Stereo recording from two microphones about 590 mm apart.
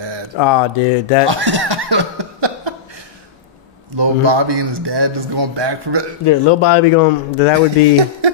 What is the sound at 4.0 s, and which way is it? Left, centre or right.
A man's voice, right.